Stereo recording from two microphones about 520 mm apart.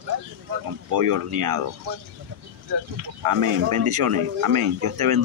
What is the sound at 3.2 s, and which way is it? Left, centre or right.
Speech, right.